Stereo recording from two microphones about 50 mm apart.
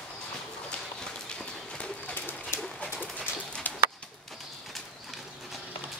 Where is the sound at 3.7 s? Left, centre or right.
Left.